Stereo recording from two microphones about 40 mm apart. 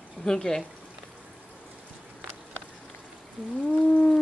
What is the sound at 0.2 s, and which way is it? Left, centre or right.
Speech, centre.